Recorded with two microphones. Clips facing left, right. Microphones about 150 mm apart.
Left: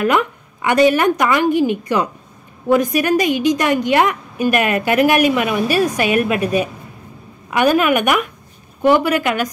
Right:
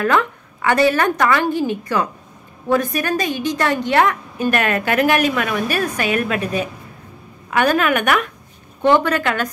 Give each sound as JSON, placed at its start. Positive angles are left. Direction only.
{"t": 0.0, "sound": "a woman's voice", "side_deg": 20}